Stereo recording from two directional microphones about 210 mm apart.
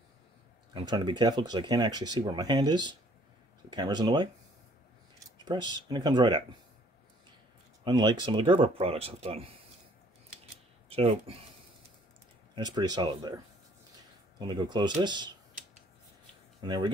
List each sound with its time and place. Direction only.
0.7 s speech: 20° right (ahead or behind)
7.8 s speech: 20° right (ahead or behind)
10.9 s speech: 25° right (ahead or behind)
12.5 s speech: 20° right (ahead or behind)
14.4 s speech: 20° right (ahead or behind)
16.6 s speech: 20° right (ahead or behind)